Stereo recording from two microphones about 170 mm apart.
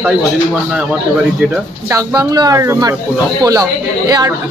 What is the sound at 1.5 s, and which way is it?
Speech, 20° right (ahead or behind).